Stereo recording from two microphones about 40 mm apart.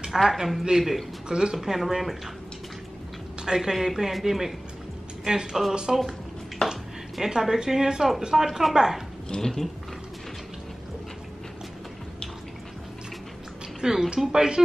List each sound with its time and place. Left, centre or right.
0.1 s speech: centre
1.3 s speech: right
1.6 s speech: centre
3.4 s speech: centre
5.9 s speech: centre
8.5 s speech: centre
9.3 s speech: centre
13.7 s a sound: centre
14.1 s speech: centre